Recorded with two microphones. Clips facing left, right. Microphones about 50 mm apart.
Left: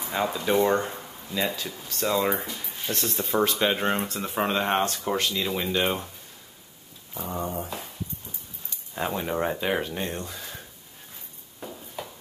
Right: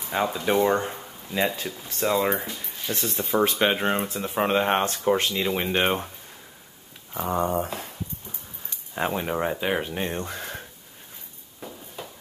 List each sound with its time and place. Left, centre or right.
0.1 s speech: centre
0.8 s speech: right
2.1 s speech: centre
3.4 s speech: right
7.2 s speech: right
8.6 s speech: right
9.8 s speech: right
10.2 s speech: right